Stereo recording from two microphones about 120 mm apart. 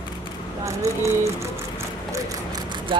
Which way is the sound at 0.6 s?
25° right (ahead or behind).